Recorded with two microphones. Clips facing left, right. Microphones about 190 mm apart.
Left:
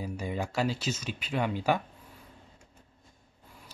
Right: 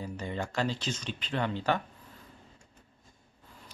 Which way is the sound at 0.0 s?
10° left (ahead or behind).